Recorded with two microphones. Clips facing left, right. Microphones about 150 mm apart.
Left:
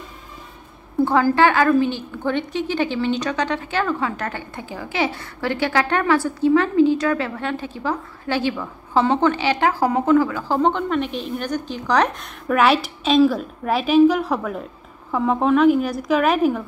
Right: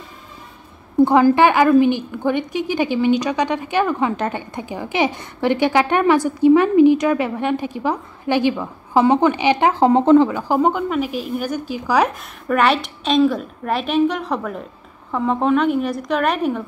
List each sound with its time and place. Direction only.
1.0 s a woman's voice: 15° right (ahead or behind)
10.5 s speech: 10° right (ahead or behind)